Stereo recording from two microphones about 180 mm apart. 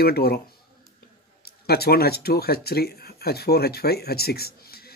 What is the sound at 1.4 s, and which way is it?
Speech, 60° left (ahead or behind).